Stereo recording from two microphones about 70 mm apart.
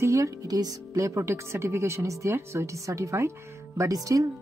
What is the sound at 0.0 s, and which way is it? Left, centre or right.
A woman's voice, right.